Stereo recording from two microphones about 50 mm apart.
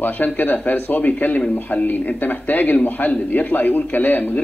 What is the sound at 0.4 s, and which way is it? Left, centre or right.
A man's voice, left.